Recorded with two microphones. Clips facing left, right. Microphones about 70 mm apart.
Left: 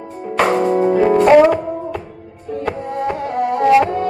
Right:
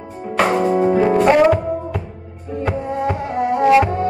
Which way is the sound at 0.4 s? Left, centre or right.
Centre.